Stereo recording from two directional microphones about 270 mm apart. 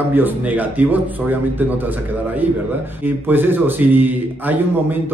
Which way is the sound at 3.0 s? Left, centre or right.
Centre.